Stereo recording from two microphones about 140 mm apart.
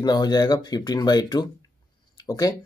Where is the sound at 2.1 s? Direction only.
30° left (ahead or behind).